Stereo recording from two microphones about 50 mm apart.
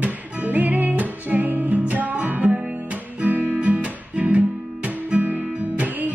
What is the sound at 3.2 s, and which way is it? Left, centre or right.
Guitar, right.